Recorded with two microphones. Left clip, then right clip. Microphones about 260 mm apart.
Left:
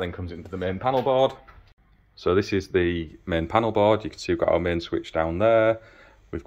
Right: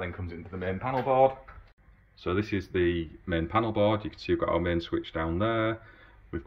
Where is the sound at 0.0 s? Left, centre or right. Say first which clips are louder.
Left 5 dB; left.